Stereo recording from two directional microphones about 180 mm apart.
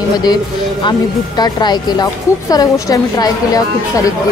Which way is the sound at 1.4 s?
25° left (ahead or behind).